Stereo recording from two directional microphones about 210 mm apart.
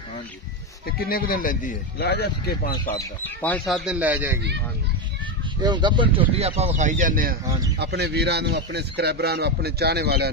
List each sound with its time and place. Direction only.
0.8 s speech: 45° left (ahead or behind)
2.7 s speech: 10° left (ahead or behind); by 4.4 s 10° right (ahead or behind)
5.6 s speech: 20° right (ahead or behind); by 7.3 s 40° right (ahead or behind)
7.7 s speech: 55° right (ahead or behind)